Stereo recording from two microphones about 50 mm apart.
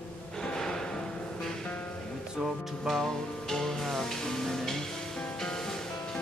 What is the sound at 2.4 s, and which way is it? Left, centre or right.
Music, centre.